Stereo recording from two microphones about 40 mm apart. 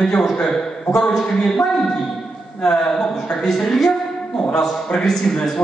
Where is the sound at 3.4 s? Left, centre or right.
Centre.